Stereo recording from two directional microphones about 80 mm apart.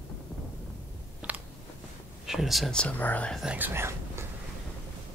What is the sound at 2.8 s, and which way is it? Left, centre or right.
Speech, centre.